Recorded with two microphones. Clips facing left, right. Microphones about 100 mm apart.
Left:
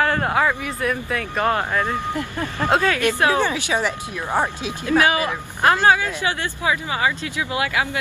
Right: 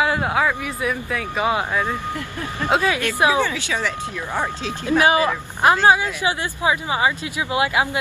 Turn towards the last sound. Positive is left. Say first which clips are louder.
# right 2 dB
turn(degrees=-20)  # may be behind; listen again after turning